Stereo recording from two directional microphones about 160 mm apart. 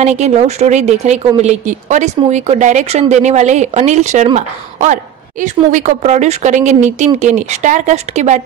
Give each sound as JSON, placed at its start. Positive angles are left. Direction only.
{"t": 0.0, "sound": "a woman's voice", "side_deg": -45}